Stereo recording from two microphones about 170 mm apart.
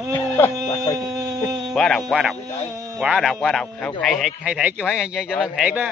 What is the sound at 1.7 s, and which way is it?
A man's voice, centre (ahead or behind).